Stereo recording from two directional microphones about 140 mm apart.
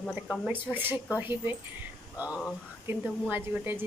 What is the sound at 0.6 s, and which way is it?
A woman's voice, 15° right (ahead or behind).